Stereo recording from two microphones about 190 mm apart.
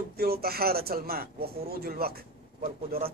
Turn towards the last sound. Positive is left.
turn(degrees=-50)  # may be behind; listen again after turning